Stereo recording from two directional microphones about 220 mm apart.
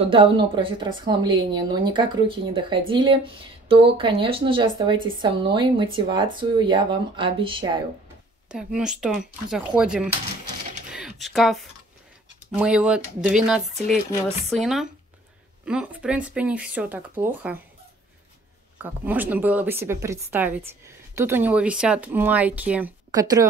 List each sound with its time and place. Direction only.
0.1 s speech: 25° right (ahead or behind)
8.5 s speech: 5° right (ahead or behind)
10.9 s typing: centre (ahead or behind)
12.4 s speech: 5° right (ahead or behind)
18.8 s speech: 10° right (ahead or behind)